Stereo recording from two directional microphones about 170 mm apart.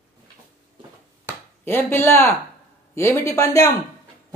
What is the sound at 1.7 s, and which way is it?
Speech, 15° left (ahead or behind).